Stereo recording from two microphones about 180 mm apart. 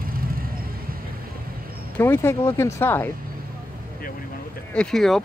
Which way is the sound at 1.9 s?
15° left (ahead or behind).